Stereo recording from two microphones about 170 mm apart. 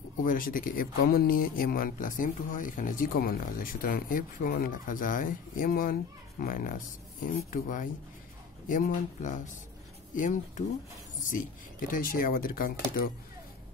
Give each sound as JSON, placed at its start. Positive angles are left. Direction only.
{"t": 0.2, "sound": "speech", "side_deg": 55}
{"t": 11.9, "sound": "speech", "side_deg": 55}